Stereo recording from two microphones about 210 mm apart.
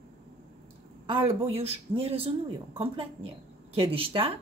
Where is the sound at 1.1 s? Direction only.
25° right (ahead or behind).